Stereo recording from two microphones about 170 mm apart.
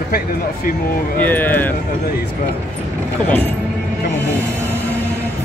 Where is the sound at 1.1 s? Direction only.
10° left (ahead or behind).